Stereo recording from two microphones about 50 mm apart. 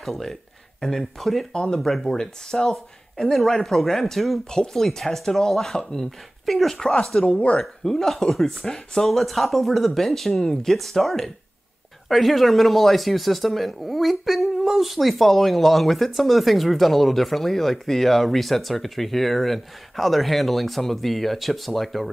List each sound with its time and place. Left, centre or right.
0.0 s speech: centre
1.5 s speech: centre
1.8 s speech: centre
2.0 s speech: centre
7.2 s speech: left
7.5 s speech: centre